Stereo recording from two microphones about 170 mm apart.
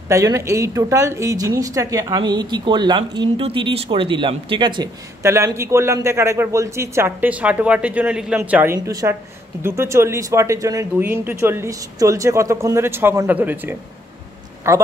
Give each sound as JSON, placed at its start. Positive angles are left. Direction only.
{"t": 0.1, "sound": "a woman's voice", "side_deg": -20}
{"t": 5.2, "sound": "speech", "side_deg": -15}